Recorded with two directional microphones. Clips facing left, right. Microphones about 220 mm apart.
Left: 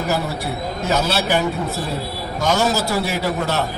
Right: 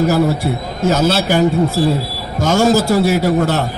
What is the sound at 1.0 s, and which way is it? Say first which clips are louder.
Speech: right 5 dB; 45° right (ahead or behind).